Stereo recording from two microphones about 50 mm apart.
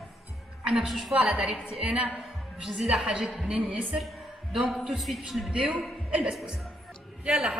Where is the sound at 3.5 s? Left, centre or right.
Right.